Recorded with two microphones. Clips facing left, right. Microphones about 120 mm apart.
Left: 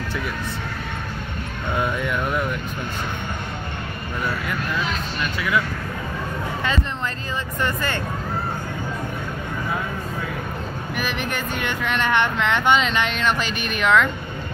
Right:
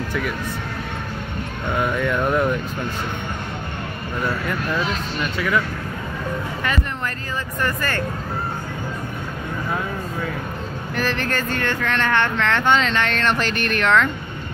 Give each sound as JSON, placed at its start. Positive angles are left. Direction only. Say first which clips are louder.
{"t": 2.0, "sound": "speech", "louder": "right 4 dB", "side_deg": -30}
{"t": 7.6, "sound": "speech", "louder": "right 1 dB", "side_deg": 20}
{"t": 11.0, "sound": "speech", "louder": "right 4 dB", "side_deg": 15}